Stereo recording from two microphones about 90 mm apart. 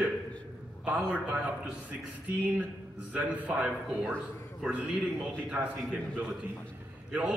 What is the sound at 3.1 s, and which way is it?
Speech, 15° right (ahead or behind).